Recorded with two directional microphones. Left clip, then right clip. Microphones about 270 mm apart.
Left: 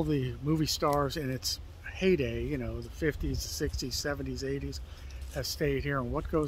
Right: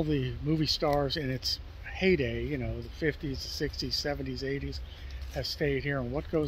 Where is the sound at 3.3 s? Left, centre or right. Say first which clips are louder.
Right 1 dB; left.